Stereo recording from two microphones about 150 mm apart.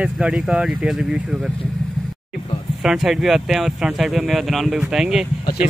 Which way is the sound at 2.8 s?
Centre (ahead or behind).